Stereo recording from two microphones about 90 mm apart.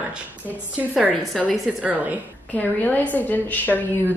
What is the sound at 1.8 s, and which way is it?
Speech, 15° right (ahead or behind).